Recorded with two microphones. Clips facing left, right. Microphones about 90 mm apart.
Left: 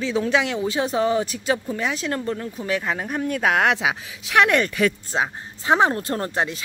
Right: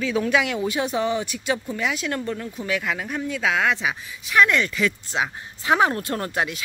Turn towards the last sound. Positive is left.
turn(degrees=30)  # may be behind; listen again after turning